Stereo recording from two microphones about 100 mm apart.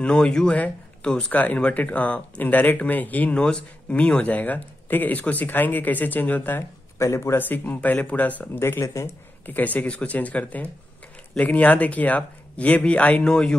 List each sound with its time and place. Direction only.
0.0 s speech: 10° left (ahead or behind); by 9.6 s 30° left (ahead or behind)
9.6 s speech: 15° left (ahead or behind)